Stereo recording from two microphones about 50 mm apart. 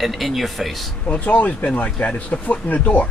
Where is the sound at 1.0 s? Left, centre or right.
Left.